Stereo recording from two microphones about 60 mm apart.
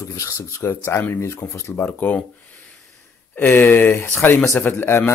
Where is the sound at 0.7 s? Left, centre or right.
Left.